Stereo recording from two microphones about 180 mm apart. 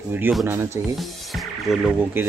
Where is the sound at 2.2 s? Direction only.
10° right (ahead or behind).